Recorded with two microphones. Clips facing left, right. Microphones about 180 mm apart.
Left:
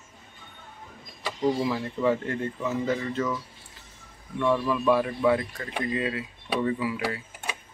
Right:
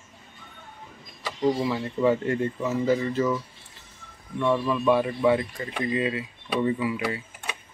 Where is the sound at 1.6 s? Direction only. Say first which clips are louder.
Right 2 dB; 5° left (ahead or behind).